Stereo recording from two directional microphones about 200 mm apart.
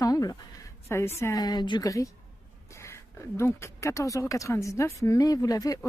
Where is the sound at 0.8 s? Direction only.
15° left (ahead or behind).